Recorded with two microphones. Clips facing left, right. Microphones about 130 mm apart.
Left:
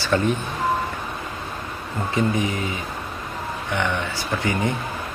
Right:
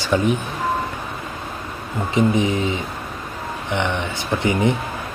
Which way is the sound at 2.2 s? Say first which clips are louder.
Right 5 dB; 20° right (ahead or behind).